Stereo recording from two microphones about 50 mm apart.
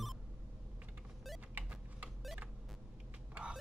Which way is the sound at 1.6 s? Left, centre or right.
Right.